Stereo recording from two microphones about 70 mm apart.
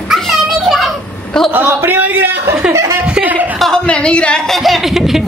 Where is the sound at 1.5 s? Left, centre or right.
Right.